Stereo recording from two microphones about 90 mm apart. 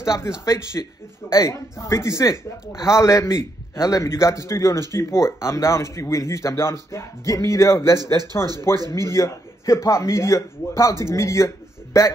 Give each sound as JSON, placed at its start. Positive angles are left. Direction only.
{"t": 0.5, "sound": "a man's voice", "side_deg": 35}